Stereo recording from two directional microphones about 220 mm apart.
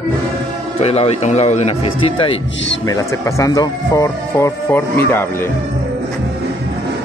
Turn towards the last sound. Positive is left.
turn(degrees=10)  # may be behind; listen again after turning